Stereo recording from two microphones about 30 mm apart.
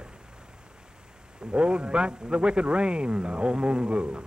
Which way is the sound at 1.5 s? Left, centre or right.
Right.